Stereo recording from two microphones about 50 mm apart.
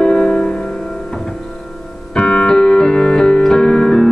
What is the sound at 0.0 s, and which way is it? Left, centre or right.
Music, centre.